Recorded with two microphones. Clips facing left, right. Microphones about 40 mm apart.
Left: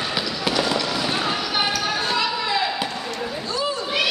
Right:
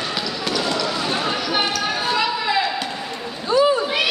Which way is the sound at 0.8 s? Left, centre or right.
Centre.